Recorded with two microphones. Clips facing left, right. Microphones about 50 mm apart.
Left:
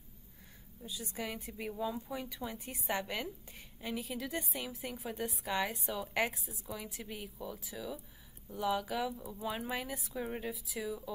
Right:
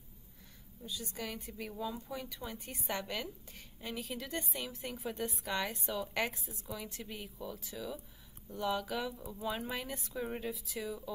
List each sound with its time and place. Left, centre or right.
0.8 s a woman's voice: centre
3.8 s a woman's voice: centre